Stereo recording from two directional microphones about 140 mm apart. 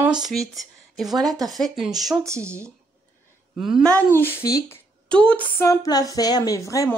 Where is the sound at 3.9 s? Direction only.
15° left (ahead or behind).